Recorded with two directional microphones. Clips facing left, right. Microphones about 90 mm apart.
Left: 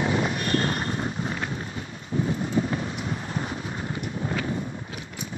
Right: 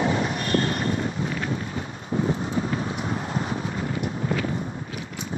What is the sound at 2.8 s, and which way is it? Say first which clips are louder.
Wind noise: right 3 dB; 35° right (ahead or behind).